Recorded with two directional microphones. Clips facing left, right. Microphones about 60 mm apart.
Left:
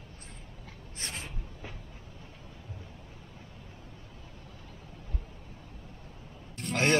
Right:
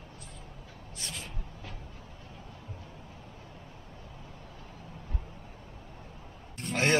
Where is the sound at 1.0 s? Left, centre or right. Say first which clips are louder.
Left 2 dB; left.